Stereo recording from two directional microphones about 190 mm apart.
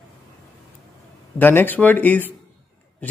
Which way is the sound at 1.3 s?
10° left (ahead or behind).